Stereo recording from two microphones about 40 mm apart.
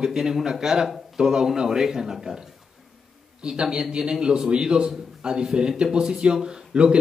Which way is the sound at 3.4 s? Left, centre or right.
Right.